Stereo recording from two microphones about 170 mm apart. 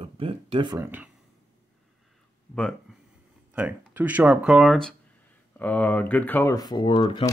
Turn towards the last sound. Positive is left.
turn(degrees=30)  # may be behind; listen again after turning